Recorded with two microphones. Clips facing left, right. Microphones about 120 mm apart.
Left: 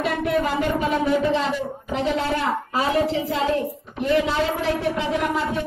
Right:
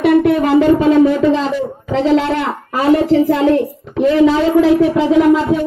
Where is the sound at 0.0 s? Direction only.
90° right.